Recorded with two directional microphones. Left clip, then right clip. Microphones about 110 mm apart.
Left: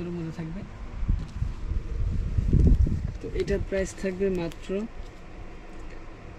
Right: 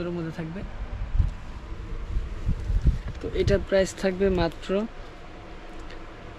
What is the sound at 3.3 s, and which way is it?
Speech, 25° left (ahead or behind).